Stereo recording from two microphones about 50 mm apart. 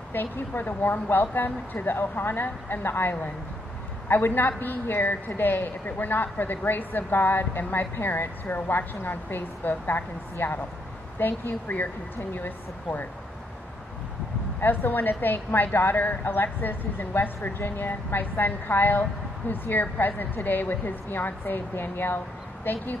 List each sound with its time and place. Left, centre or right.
0.1 s a woman's voice: left
14.6 s a woman's voice: left